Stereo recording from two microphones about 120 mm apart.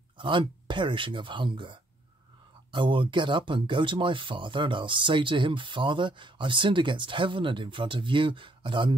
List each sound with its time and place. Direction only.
0.2 s speech: 45° right (ahead or behind)